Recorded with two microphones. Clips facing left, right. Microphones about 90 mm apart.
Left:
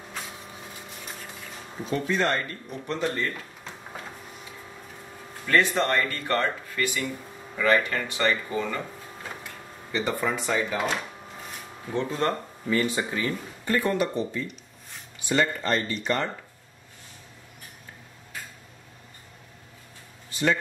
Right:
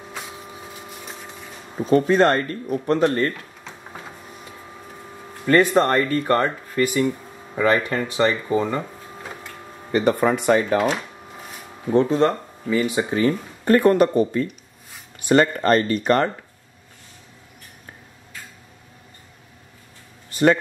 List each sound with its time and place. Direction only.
0.8 s a sound: 5° right (ahead or behind)
1.9 s speech: 45° right (ahead or behind)
5.5 s speech: 45° right (ahead or behind); by 8.8 s 25° right (ahead or behind)
9.8 s speech: 55° right (ahead or behind)
12.1 s speech: 20° right (ahead or behind)
13.1 s speech: 30° right (ahead or behind)
13.7 s speech: 55° right (ahead or behind)
20.2 s a sound: 55° right (ahead or behind)